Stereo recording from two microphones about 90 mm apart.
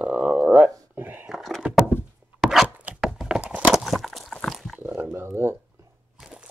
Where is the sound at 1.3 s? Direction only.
Centre (ahead or behind).